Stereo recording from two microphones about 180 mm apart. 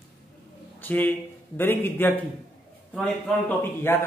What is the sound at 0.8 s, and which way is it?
Speech, 10° left (ahead or behind).